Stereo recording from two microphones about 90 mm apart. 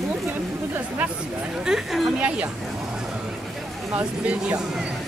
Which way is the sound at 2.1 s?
15° right (ahead or behind).